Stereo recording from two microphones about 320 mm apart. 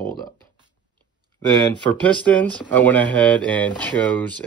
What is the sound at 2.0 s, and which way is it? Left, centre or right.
Speech, centre.